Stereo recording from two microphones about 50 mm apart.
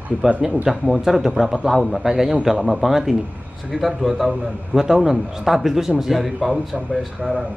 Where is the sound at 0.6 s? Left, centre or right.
Centre.